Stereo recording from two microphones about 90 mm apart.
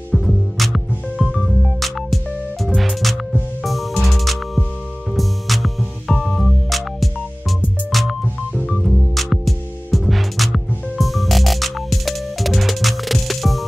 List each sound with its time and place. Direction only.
0.1 s music: centre (ahead or behind)